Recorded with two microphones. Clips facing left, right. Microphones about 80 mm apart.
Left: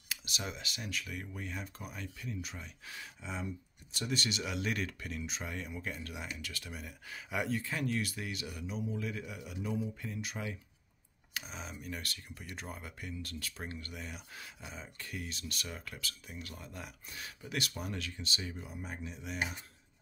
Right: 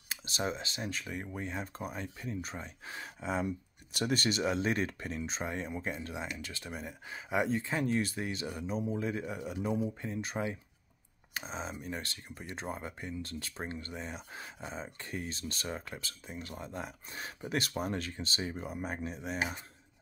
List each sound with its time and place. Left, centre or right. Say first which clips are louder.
0.1 s speech: right 6 dB; right
3.2 s speech: right 8 dB; right